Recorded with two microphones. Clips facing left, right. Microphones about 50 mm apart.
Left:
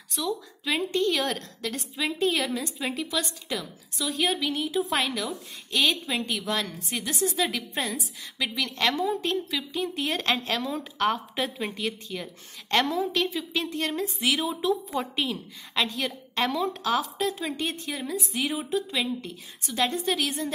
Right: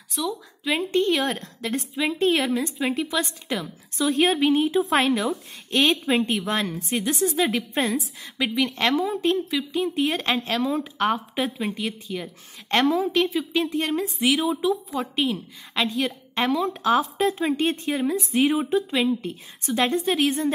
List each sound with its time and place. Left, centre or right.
0.1 s speech: centre
0.9 s a woman's voice: right; by 14.7 s centre
14.7 s speech: centre
16.8 s a woman's voice: right